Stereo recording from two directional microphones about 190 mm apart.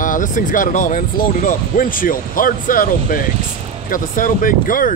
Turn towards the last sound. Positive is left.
turn(degrees=45)  # may be behind; listen again after turning